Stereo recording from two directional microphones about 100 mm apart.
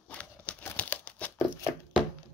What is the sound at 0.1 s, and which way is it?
Crumpling, 10° left (ahead or behind).